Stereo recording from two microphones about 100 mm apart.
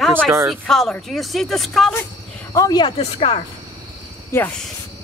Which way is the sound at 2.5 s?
35° left (ahead or behind).